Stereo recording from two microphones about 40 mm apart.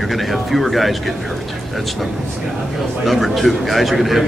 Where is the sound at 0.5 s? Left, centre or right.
Centre.